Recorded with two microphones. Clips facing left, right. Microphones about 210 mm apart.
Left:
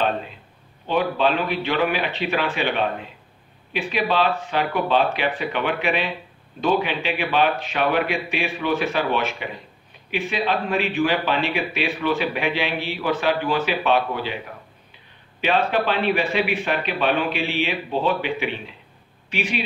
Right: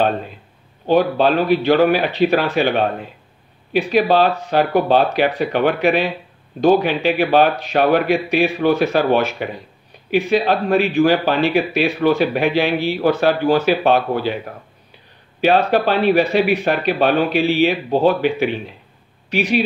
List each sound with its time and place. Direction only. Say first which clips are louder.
0.8 s speech: right 6 dB; 40° right (ahead or behind)
15.4 s speech: right 6 dB; 40° right (ahead or behind)